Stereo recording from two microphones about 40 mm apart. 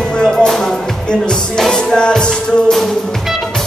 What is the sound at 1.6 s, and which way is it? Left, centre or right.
Music, centre.